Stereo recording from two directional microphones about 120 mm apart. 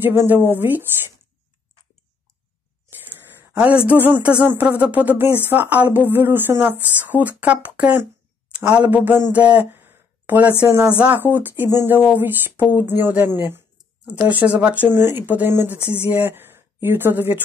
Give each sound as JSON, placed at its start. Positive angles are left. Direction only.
{"t": 0.0, "sound": "speech", "side_deg": -20}
{"t": 3.3, "sound": "speech", "side_deg": -15}
{"t": 9.3, "sound": "a sound", "side_deg": -10}
{"t": 11.0, "sound": "speech", "side_deg": -15}